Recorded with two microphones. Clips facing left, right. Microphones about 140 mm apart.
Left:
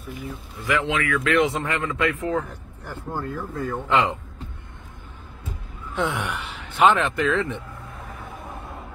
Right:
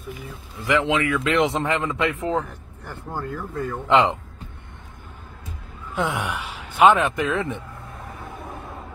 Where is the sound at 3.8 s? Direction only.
25° right (ahead or behind).